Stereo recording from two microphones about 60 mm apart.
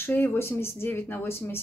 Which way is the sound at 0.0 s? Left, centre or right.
Left.